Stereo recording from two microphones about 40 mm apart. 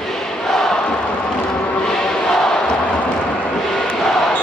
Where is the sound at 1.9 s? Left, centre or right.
Centre.